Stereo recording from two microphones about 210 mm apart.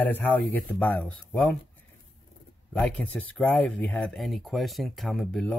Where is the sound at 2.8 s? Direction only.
5° left (ahead or behind).